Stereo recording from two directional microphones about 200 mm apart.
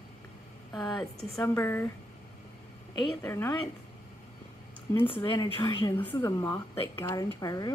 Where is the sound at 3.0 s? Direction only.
5° left (ahead or behind).